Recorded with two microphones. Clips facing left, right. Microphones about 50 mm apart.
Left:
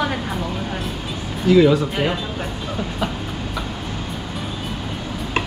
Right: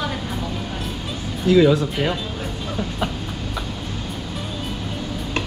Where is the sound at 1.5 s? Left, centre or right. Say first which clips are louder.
Left 1 dB; centre.